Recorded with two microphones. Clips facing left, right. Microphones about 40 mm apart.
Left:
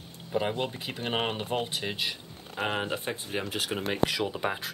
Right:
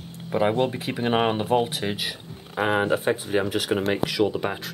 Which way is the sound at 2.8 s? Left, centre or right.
Right.